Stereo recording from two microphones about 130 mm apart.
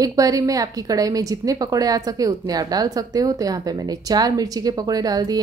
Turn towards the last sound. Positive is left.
turn(degrees=-30)  # may be behind; listen again after turning